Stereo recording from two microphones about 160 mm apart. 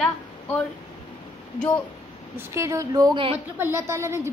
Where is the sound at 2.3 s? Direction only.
20° right (ahead or behind).